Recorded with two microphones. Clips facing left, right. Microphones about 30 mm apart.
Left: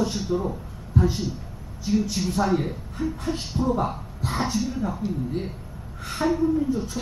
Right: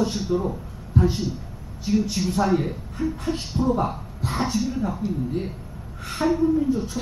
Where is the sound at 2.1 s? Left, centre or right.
Centre.